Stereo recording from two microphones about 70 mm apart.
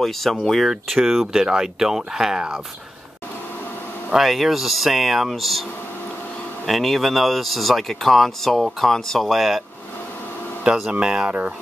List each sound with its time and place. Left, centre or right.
0.0 s speech: centre
4.1 s speech: centre
6.6 s speech: centre
10.6 s speech: centre
11.2 s speech: right